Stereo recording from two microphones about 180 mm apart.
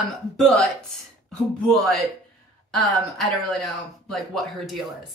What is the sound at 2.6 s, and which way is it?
A woman's voice, centre (ahead or behind).